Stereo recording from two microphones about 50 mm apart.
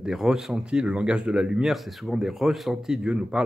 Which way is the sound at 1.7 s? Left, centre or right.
Centre.